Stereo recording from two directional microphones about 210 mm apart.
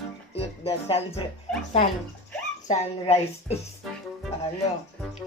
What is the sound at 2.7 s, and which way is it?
Speech, 30° left (ahead or behind).